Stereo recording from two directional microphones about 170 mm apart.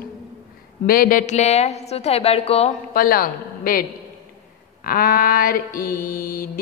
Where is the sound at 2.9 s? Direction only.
60° left (ahead or behind).